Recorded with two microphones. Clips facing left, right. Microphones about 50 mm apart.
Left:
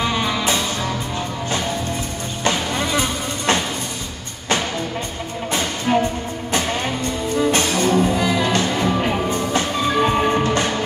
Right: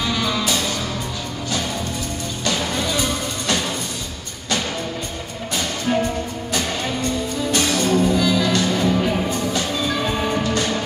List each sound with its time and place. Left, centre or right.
0.0 s music: left
2.4 s music: left
5.9 s music: left
7.5 s music: left